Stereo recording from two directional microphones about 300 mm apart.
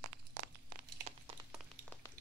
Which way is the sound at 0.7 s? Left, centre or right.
Right.